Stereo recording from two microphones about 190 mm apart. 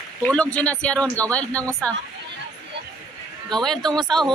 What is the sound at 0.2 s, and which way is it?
Speech, 5° left (ahead or behind).